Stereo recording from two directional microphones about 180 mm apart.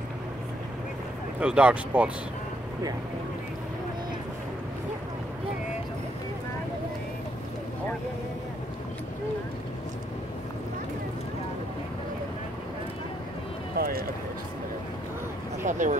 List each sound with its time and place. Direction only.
1.4 s speech: 5° right (ahead or behind)
13.7 s speech: 55° right (ahead or behind)
15.6 s speech: 45° right (ahead or behind)